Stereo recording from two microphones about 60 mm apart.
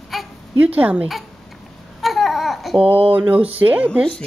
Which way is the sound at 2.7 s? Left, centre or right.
Right.